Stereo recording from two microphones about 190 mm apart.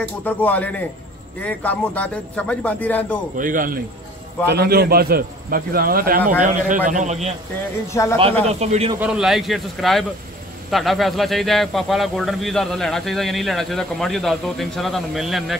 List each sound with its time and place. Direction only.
0.0 s a man's voice: 10° left (ahead or behind)
3.3 s a man's voice: 45° right (ahead or behind)
4.5 s a man's voice: 55° right (ahead or behind); by 7.3 s 35° right (ahead or behind)
7.9 s a man's voice: 15° left (ahead or behind)
8.2 s speech: 30° right (ahead or behind)
9.0 s a man's voice: 5° right (ahead or behind)